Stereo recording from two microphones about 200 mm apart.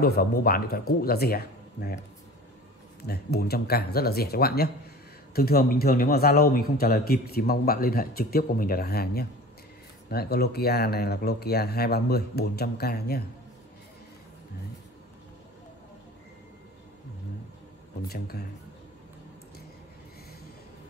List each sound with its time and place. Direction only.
0.0 s speech: 50° left (ahead or behind)
3.1 s speech: 50° left (ahead or behind)
18.0 s speech: 50° left (ahead or behind)